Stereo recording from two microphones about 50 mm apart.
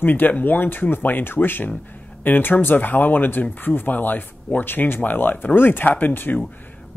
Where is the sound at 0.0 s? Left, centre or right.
Left.